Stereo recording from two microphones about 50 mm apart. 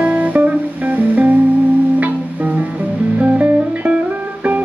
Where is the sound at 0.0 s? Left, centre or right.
Right.